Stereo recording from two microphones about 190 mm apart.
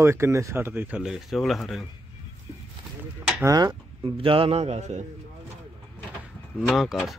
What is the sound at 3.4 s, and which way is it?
Speech, 20° right (ahead or behind).